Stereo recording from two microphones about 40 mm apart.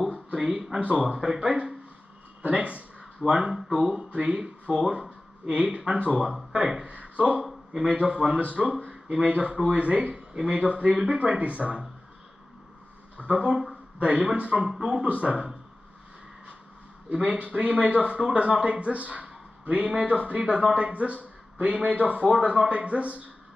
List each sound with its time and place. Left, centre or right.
0.4 s speech: centre
0.7 s a man's voice: right
1.0 s speech: centre
2.4 s speech: right
3.3 s speech: centre
3.5 s speech: centre
3.8 s a man's voice: right
6.5 s speech: right
6.9 s a man's voice: right
13.2 s a man's voice: right
15.0 s a man's voice: right
17.1 s a man's voice: right